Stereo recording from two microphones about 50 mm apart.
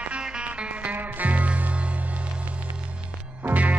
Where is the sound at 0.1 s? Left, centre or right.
Right.